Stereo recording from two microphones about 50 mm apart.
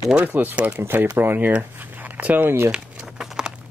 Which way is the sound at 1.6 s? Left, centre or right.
Right.